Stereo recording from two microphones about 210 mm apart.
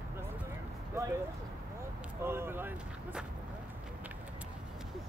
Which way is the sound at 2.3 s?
10° right (ahead or behind).